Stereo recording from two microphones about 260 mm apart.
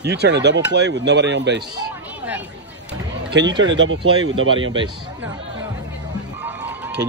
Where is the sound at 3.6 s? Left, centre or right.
Right.